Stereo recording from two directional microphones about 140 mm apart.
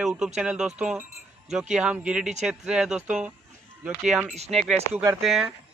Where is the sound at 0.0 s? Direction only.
5° right (ahead or behind).